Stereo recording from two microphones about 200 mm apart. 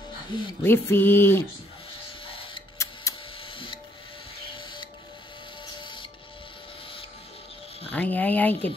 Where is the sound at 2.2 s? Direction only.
25° left (ahead or behind).